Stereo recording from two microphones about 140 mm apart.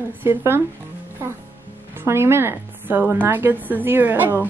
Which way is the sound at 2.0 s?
20° right (ahead or behind).